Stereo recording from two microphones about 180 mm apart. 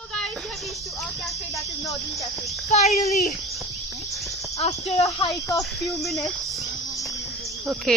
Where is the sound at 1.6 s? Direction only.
20° left (ahead or behind).